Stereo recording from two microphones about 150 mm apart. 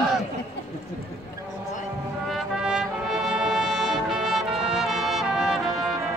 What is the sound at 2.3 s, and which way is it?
Brass instrument, 5° right (ahead or behind).